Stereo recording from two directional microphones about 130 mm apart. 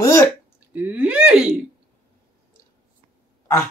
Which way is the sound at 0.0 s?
20° left (ahead or behind).